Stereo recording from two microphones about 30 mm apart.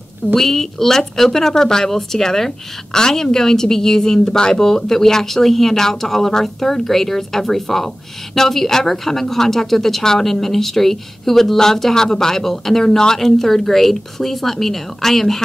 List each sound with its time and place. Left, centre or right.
0.3 s speech: centre